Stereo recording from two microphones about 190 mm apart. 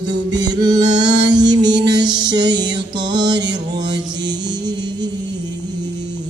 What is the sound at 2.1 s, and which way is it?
Music, 20° right (ahead or behind).